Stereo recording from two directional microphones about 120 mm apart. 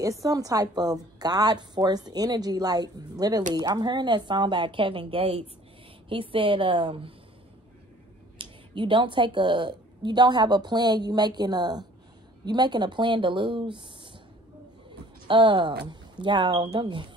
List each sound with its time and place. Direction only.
0.0 s a woman's voice: 30° right (ahead or behind); by 7.2 s 45° right (ahead or behind)
8.4 s a woman's voice: 45° right (ahead or behind)
15.2 s a woman's voice: 45° right (ahead or behind)